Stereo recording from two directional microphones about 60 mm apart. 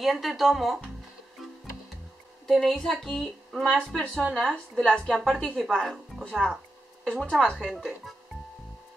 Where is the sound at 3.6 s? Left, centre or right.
Centre.